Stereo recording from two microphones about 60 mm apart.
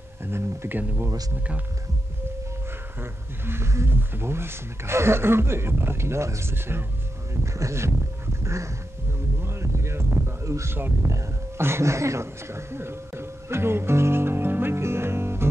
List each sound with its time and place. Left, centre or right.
0.2 s speech: right
3.0 s speech: right
8.4 s a sound: right
11.1 s music: right